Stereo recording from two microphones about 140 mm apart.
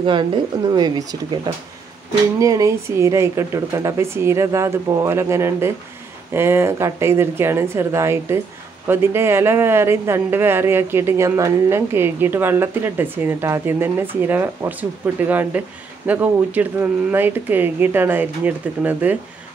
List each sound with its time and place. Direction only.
0.0 s speech: 35° right (ahead or behind); by 19.1 s 10° right (ahead or behind)